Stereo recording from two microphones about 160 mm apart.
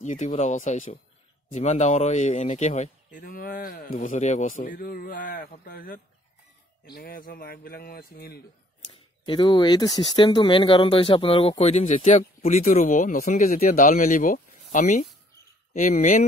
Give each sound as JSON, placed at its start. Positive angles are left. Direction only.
{"t": 0.0, "sound": "speech", "side_deg": 50}
{"t": 7.0, "sound": "speech", "side_deg": 65}
{"t": 9.2, "sound": "speech", "side_deg": 30}